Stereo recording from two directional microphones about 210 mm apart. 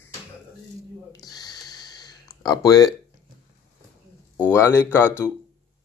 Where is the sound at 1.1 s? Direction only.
20° left (ahead or behind).